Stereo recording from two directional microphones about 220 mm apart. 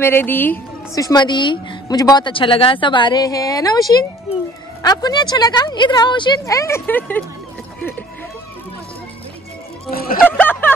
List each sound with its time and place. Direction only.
0.0 s a woman's voice: 10° left (ahead or behind)
4.8 s speech: 20° left (ahead or behind)
9.8 s speech: 40° left (ahead or behind)
10.2 s speech: 10° left (ahead or behind)